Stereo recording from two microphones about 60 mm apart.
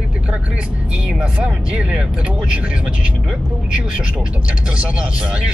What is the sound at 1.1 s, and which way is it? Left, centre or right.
Speech, centre.